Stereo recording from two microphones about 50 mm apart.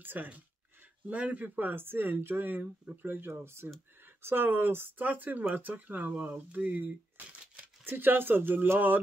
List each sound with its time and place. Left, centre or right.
0.0 s speech: right
7.8 s speech: right